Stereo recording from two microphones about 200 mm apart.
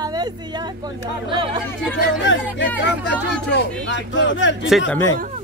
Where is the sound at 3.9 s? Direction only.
65° left (ahead or behind).